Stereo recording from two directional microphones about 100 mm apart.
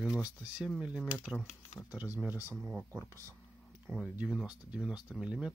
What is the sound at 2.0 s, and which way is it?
Speech, 15° right (ahead or behind).